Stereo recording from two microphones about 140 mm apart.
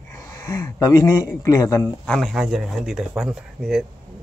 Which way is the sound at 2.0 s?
Centre (ahead or behind).